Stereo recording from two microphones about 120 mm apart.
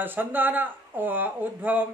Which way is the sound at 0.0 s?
15° right (ahead or behind).